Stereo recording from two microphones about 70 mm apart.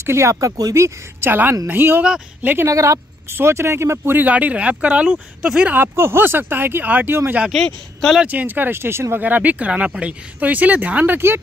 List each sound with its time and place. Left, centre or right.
0.0 s speech: right
0.7 s speech: right
1.3 s speech: right
2.7 s speech: right
3.3 s speech: right; by 5.8 s centre
5.8 s speech: right
7.5 s speech: centre
8.2 s speech: right
9.2 s speech: right